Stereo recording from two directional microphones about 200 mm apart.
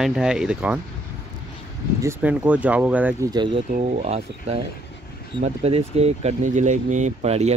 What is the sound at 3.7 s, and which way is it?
Speech, 35° right (ahead or behind).